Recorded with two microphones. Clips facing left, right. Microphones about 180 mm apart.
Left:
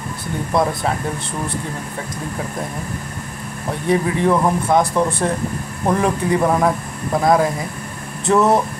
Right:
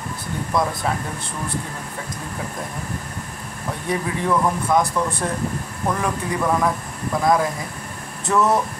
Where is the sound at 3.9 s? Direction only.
30° left (ahead or behind).